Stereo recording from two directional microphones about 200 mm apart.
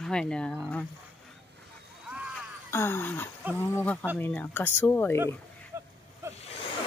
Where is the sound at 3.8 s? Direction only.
5° left (ahead or behind).